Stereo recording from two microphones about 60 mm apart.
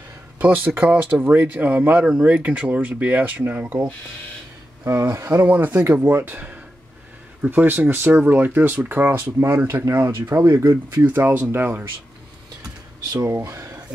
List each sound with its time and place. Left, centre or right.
0.4 s speech: right
5.2 s speech: right
9.8 s speech: right
10.5 s speech: right
11.0 s speech: right
13.3 s speech: right